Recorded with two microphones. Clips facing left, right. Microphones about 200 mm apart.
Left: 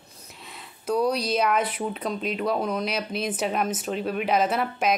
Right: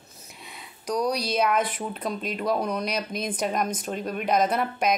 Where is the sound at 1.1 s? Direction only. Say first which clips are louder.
Left 1 dB; 5° left (ahead or behind).